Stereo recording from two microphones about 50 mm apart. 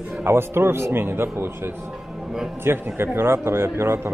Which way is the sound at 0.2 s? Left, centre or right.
Right.